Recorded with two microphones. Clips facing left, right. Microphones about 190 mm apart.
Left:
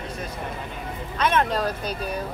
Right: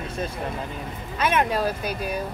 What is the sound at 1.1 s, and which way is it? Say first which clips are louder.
A woman's voice: even; 10° right (ahead or behind).